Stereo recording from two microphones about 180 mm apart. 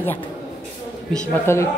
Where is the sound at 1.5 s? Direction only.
15° left (ahead or behind).